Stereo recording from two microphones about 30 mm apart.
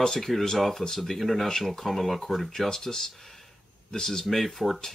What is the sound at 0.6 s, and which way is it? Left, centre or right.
Speech, centre.